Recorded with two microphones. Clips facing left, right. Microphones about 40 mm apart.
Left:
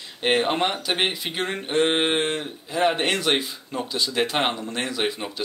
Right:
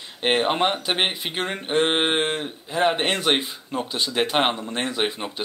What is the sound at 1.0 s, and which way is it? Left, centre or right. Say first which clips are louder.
Speech: right 1 dB; right.